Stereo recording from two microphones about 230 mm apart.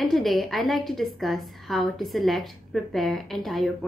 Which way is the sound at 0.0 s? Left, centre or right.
Centre.